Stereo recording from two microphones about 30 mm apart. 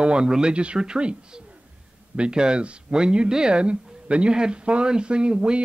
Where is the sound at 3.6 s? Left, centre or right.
Right.